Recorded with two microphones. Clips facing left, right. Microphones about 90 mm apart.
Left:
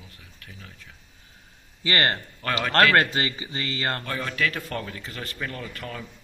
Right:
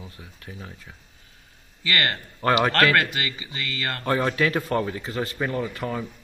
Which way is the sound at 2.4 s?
30° right (ahead or behind).